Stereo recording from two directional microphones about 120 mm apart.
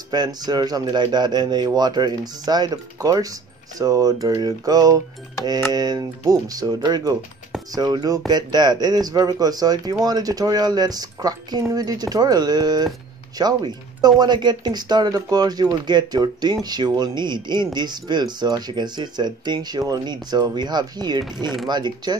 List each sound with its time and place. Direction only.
0.1 s a man's voice: 35° right (ahead or behind)